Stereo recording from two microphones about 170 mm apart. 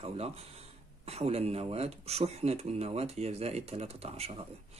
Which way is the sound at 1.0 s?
35° right (ahead or behind).